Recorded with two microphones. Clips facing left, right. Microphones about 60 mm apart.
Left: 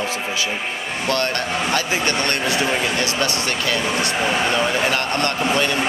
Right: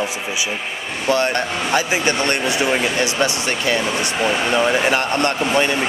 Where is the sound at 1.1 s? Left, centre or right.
Centre.